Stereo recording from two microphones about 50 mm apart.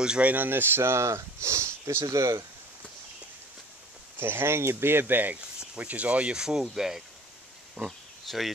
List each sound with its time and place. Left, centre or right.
0.0 s speech: centre
0.3 s speech: right
4.2 s speech: right
5.8 s speech: right
6.3 s speech: centre
8.3 s speech: centre